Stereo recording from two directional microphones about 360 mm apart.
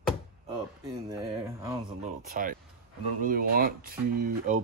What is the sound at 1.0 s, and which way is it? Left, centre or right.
Speech, centre.